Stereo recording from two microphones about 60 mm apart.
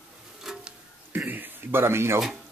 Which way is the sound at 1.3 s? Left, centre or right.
Right.